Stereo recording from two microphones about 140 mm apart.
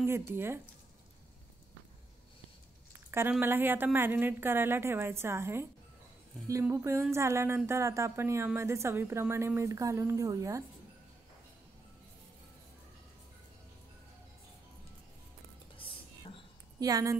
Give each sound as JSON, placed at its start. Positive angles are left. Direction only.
{"t": 0.0, "sound": "a woman's voice", "side_deg": -15}
{"t": 3.1, "sound": "a woman's voice", "side_deg": -15}
{"t": 6.7, "sound": "speech", "side_deg": -20}
{"t": 16.8, "sound": "speech", "side_deg": -25}